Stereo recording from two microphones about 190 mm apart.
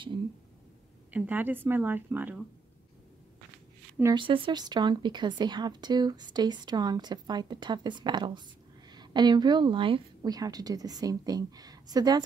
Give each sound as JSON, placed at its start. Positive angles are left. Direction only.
{"t": 1.1, "sound": "speech", "side_deg": -10}
{"t": 4.0, "sound": "speech", "side_deg": -25}